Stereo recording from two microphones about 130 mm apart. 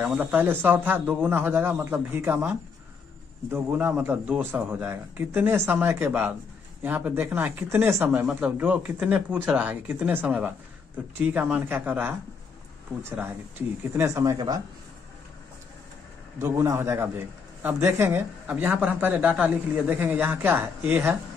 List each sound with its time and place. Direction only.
0.0 s speech: 10° right (ahead or behind); by 14.6 s 30° right (ahead or behind)
16.3 s speech: 20° right (ahead or behind)